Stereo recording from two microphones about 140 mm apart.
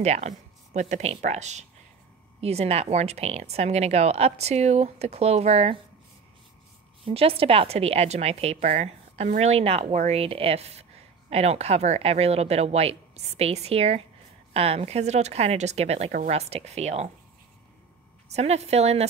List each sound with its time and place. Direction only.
0.0 s a woman's voice: 50° right (ahead or behind)
7.1 s a woman's voice: 40° right (ahead or behind)
18.3 s a woman's voice: 50° right (ahead or behind)